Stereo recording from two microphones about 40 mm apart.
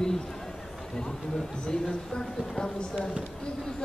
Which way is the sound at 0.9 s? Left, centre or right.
Left.